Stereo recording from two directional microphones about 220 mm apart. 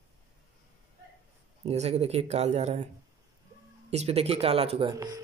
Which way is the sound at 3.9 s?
30° right (ahead or behind).